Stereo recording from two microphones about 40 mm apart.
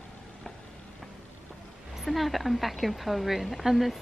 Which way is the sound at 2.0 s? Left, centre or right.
Centre.